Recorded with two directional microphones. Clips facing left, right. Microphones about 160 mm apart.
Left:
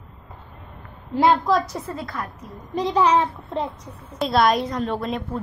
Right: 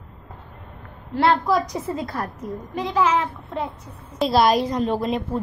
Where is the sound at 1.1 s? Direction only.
15° left (ahead or behind).